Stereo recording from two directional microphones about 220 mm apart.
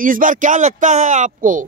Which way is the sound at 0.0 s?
40° right (ahead or behind).